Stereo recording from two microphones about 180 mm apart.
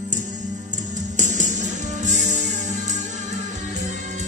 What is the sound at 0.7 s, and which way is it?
Music, 45° right (ahead or behind).